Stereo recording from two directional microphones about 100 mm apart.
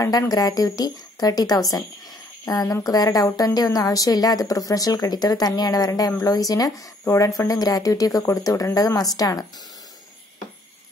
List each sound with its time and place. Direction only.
0.0 s a woman's voice: 35° left (ahead or behind)